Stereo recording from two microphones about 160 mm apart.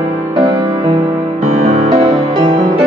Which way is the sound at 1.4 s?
45° right (ahead or behind).